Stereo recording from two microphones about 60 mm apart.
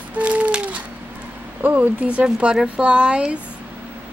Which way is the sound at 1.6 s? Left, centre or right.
Right.